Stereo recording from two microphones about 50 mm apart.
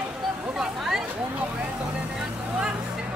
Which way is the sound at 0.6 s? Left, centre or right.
Centre.